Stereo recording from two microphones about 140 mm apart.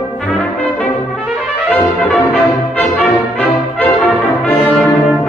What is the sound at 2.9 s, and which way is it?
Brass instrument, 5° left (ahead or behind).